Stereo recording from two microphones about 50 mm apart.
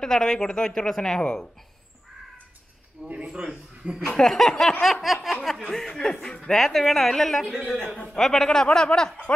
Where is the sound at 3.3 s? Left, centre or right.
Centre.